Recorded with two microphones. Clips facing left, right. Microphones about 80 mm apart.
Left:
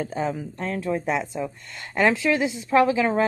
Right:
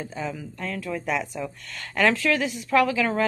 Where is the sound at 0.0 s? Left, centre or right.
Left.